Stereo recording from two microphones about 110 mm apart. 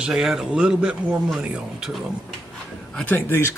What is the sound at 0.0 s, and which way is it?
A man's voice, 5° right (ahead or behind).